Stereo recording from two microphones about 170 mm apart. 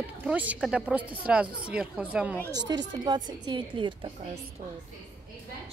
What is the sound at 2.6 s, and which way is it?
Speech, 90° right.